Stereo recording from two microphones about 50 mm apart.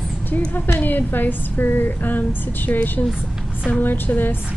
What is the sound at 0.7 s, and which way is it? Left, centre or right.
A woman's voice, left.